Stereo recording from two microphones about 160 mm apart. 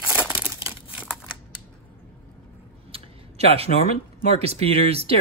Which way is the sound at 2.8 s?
35° right (ahead or behind).